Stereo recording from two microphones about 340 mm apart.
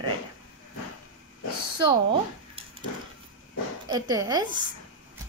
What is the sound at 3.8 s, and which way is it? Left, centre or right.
Speech, centre.